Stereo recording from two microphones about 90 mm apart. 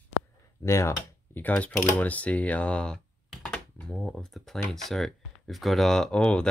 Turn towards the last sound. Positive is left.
turn(degrees=10)  # may be behind; listen again after turning